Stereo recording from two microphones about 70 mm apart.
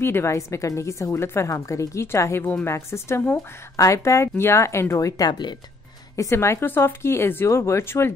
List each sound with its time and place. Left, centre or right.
0.0 s a woman's voice: left
6.3 s speech: left